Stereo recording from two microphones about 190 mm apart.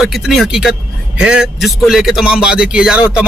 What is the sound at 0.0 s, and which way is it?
A man's voice, centre (ahead or behind).